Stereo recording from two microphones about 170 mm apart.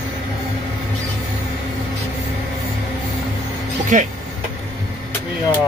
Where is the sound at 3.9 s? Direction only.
45° right (ahead or behind).